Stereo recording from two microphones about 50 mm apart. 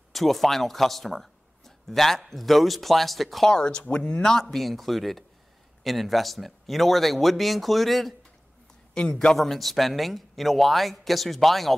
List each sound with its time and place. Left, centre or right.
0.1 s speech: centre
3.4 s speech: centre
9.1 s a man's voice: centre